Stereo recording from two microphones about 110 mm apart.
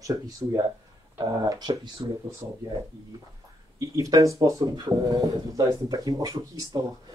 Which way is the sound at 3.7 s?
30° right (ahead or behind).